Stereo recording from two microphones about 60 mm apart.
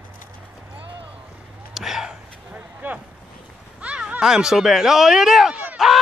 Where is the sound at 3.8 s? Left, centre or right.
Centre.